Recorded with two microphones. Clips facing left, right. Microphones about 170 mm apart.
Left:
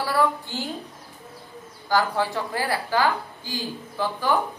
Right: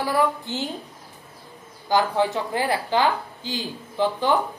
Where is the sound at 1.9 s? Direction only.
20° right (ahead or behind).